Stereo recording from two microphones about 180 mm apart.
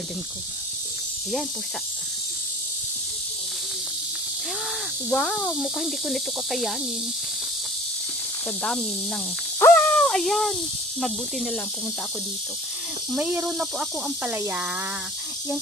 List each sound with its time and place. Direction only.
5.1 s speech: centre (ahead or behind)
9.6 s owl: 10° left (ahead or behind)
11.0 s speech: centre (ahead or behind)
13.1 s speech: 5° right (ahead or behind)